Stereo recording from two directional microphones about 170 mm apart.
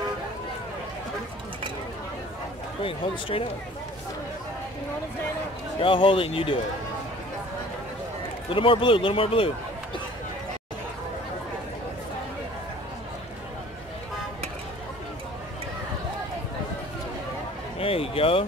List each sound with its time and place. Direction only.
2.8 s a man's voice: 30° left (ahead or behind)
5.8 s a man's voice: 30° left (ahead or behind)
8.5 s a man's voice: 30° left (ahead or behind)
17.7 s speech: 35° left (ahead or behind)